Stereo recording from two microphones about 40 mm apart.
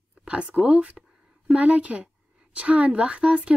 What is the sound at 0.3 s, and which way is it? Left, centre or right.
Speech, right.